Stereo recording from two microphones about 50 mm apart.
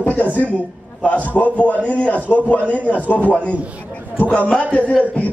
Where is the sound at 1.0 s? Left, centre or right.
Left.